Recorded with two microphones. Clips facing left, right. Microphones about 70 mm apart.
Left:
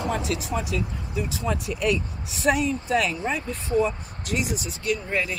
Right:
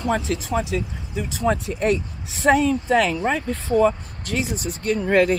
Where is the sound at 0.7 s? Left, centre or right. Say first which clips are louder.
Right 3 dB; right.